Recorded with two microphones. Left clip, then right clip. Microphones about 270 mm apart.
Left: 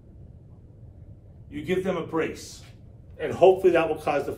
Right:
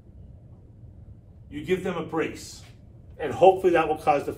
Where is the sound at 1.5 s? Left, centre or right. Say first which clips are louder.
Left 1 dB; centre.